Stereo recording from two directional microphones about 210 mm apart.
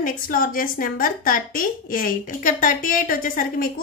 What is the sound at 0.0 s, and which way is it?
A woman's voice, 40° left (ahead or behind).